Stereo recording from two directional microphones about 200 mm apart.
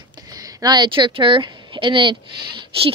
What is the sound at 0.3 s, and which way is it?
A woman's voice, 20° right (ahead or behind).